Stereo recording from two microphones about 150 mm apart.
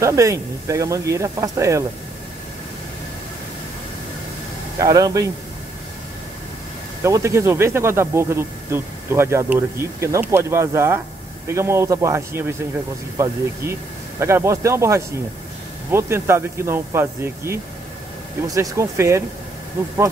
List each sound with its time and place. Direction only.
0.0 s speech: 20° right (ahead or behind)
4.7 s speech: 25° right (ahead or behind)
7.0 s speech: 20° right (ahead or behind)
14.2 s speech: 20° right (ahead or behind)